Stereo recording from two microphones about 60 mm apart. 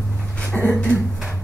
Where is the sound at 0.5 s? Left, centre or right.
Centre.